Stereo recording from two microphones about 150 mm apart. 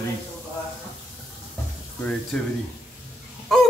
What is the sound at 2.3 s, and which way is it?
Speech, centre (ahead or behind).